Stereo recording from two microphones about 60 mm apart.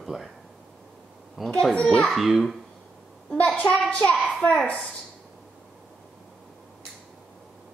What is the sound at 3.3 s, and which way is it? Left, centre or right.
Speech, left.